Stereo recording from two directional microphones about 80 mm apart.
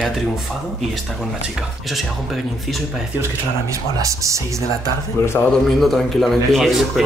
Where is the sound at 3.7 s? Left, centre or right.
Right.